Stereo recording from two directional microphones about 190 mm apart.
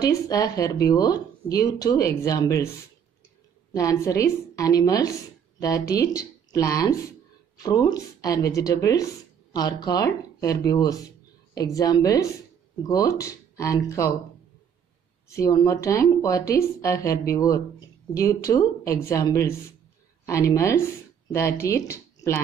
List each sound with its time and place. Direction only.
0.0 s speech: 20° left (ahead or behind)
3.7 s speech: 15° left (ahead or behind)
15.2 s speech: 15° left (ahead or behind)